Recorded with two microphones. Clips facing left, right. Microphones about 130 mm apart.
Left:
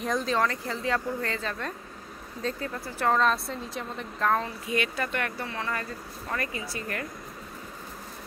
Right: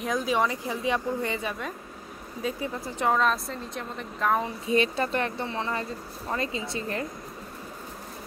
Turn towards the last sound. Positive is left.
turn(degrees=-25)  # may be behind; listen again after turning